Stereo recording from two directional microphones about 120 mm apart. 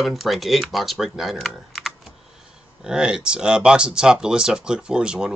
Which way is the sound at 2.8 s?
5° right (ahead or behind).